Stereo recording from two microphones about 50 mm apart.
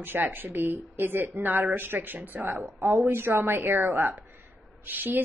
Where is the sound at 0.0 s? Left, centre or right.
Right.